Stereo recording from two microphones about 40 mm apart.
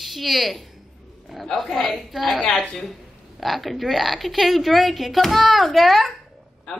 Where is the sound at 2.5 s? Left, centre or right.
Centre.